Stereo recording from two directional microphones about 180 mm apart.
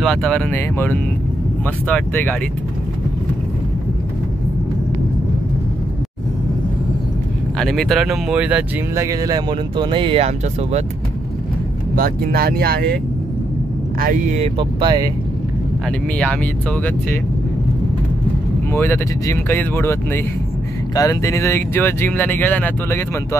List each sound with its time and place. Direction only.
0.0 s speech: 5° left (ahead or behind)
7.5 s speech: centre (ahead or behind); by 10.8 s 35° right (ahead or behind)
11.9 s speech: 55° right (ahead or behind)
13.9 s speech: 50° right (ahead or behind); by 15.0 s 25° right (ahead or behind)
18.7 s speech: 15° left (ahead or behind)